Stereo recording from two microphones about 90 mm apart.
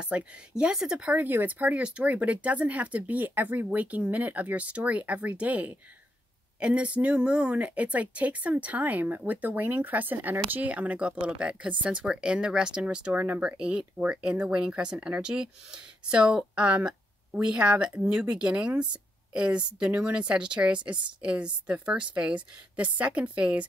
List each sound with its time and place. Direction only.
0.0 s speech: 15° right (ahead or behind)